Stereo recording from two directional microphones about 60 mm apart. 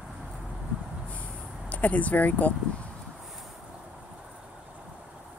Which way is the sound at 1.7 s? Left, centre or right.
Left.